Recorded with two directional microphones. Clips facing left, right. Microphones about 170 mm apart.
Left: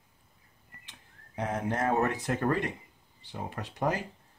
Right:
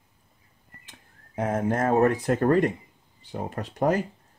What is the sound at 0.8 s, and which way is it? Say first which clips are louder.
Speech: right 3 dB; 50° right (ahead or behind).